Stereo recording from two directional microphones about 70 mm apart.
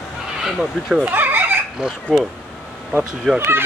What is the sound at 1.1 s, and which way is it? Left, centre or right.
Fowl, right.